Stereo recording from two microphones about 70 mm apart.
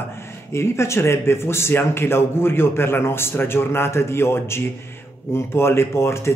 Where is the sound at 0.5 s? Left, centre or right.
Left.